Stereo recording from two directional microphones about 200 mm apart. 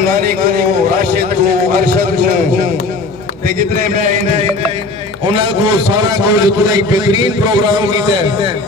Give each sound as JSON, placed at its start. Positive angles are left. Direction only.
{"t": 0.1, "sound": "a sound", "side_deg": -45}
{"t": 3.4, "sound": "a man's voice", "side_deg": -45}
{"t": 5.3, "sound": "a man's voice", "side_deg": -25}